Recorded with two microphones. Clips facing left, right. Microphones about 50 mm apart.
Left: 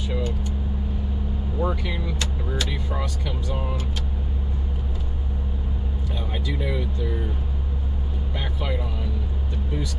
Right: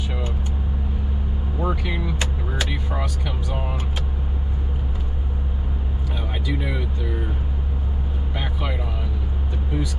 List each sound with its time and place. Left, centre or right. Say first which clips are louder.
1.6 s speech: right 1 dB; centre
6.4 s speech: right 1 dB; centre